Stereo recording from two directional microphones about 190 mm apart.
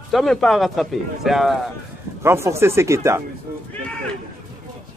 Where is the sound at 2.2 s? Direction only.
15° right (ahead or behind).